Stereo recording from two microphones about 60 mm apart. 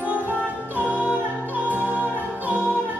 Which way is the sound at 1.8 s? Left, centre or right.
Left.